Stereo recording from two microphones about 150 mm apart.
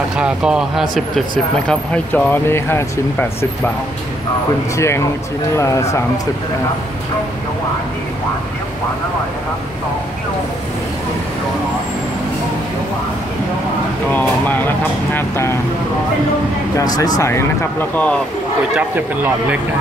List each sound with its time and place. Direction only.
0.2 s speech: 5° right (ahead or behind); by 3.7 s 15° left (ahead or behind)
4.7 s speech: 20° left (ahead or behind)
14.1 s speech: 10° left (ahead or behind)
17.2 s speech: 20° left (ahead or behind)
18.8 s speech: 10° right (ahead or behind)